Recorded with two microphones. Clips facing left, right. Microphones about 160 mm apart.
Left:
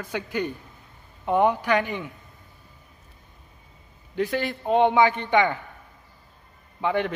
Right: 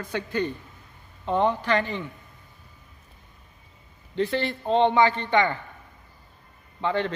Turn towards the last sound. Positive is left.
turn(degrees=15)  # may be behind; listen again after turning